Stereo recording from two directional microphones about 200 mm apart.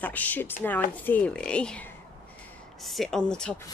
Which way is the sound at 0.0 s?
10° left (ahead or behind).